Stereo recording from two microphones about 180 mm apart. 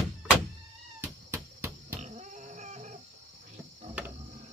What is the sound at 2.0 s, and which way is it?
Dog, 40° right (ahead or behind).